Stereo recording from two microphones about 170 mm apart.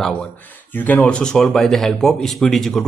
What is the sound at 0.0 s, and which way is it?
Speech, 5° left (ahead or behind).